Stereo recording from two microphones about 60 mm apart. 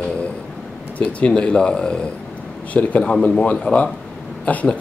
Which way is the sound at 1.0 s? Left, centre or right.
Left.